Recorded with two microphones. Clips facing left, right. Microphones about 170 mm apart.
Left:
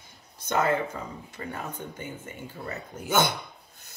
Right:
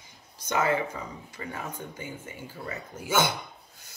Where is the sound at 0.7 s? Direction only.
10° right (ahead or behind).